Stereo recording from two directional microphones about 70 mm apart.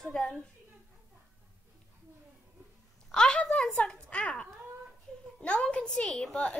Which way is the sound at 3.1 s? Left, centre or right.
Centre.